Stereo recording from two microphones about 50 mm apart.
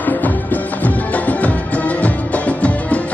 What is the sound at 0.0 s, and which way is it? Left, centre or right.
Music, left.